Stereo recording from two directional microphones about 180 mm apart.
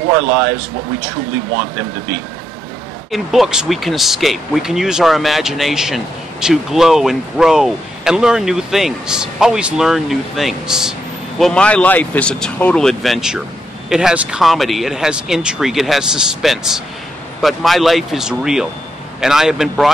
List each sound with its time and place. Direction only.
3.1 s speech: centre (ahead or behind)